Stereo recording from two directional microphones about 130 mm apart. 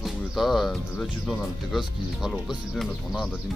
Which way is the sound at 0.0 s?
Centre (ahead or behind).